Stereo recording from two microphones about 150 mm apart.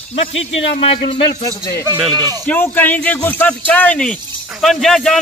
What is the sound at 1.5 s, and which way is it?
Speech, 20° left (ahead or behind).